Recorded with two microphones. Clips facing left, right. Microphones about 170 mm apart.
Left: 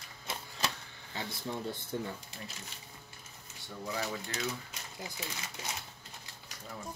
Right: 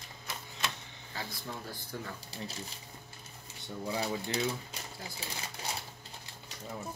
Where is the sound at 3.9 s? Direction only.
30° right (ahead or behind).